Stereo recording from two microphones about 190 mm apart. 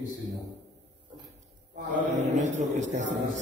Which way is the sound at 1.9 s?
40° right (ahead or behind).